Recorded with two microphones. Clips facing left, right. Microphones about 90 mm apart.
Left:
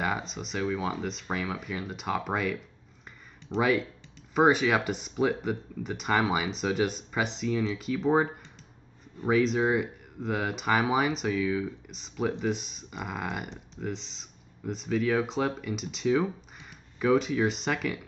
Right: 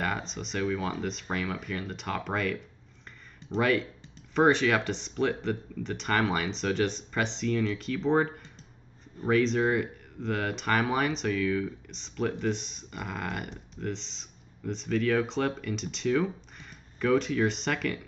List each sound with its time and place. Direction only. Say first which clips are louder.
0.0 s speech: left 1 dB; 5° left (ahead or behind)